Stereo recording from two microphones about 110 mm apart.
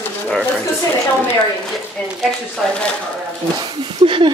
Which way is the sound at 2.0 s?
10° left (ahead or behind).